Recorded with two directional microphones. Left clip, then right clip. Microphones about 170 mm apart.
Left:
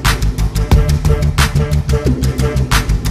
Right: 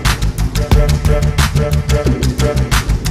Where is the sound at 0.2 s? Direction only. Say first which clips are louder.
Right 2 dB; centre (ahead or behind).